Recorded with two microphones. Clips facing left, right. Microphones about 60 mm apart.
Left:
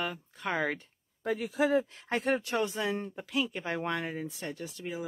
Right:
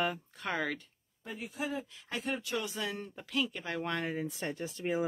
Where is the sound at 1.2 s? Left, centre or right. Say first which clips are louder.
Left 10 dB; left.